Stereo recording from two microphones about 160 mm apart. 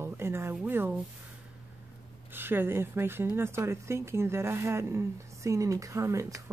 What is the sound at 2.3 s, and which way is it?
Speech, 15° right (ahead or behind).